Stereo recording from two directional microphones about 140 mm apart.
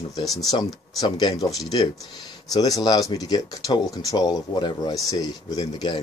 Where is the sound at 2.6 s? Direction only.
25° left (ahead or behind).